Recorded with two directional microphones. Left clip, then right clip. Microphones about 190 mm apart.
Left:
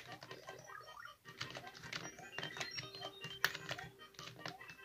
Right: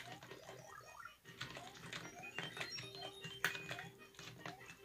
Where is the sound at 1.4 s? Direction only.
25° left (ahead or behind).